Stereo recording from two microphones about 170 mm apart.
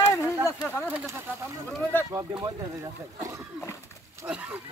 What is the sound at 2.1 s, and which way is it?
Speech, 15° right (ahead or behind).